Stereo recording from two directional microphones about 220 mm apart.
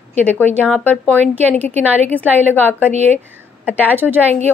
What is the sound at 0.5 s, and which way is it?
Speech, 5° right (ahead or behind).